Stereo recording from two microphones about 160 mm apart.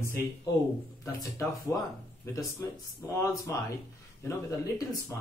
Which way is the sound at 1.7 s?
15° left (ahead or behind).